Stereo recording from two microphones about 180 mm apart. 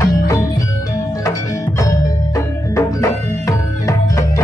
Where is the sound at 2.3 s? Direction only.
15° left (ahead or behind).